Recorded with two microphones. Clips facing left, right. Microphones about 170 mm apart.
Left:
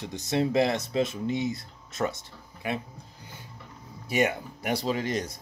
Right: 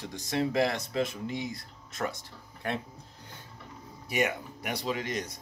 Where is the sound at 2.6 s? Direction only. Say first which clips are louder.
Left 2 dB; 5° left (ahead or behind).